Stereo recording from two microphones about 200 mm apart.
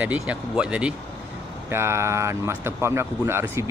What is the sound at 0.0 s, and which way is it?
Speech, 5° right (ahead or behind).